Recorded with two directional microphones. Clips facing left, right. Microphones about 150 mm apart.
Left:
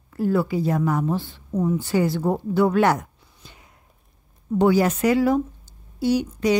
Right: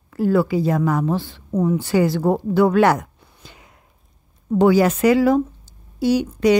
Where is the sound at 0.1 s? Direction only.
90° right.